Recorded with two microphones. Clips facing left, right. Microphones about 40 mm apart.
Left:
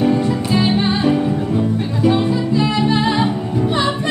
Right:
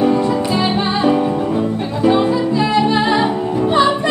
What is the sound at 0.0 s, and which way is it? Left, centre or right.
Music, centre.